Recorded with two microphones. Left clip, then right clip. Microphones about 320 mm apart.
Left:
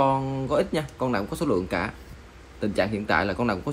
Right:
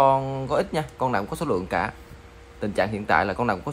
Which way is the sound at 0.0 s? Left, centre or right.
Right.